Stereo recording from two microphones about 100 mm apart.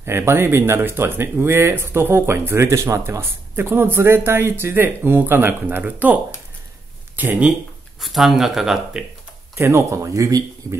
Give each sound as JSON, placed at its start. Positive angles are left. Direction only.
{"t": 0.0, "sound": "speech", "side_deg": -25}
{"t": 7.2, "sound": "speech", "side_deg": -20}
{"t": 8.0, "sound": "speech", "side_deg": 0}
{"t": 9.6, "sound": "speech", "side_deg": -25}